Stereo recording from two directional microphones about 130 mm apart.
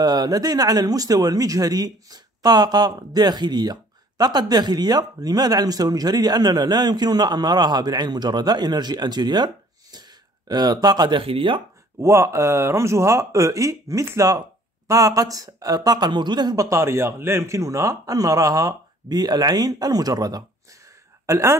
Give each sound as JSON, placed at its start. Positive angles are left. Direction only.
{"t": 0.0, "sound": "speech", "side_deg": -30}
{"t": 12.0, "sound": "speech", "side_deg": -20}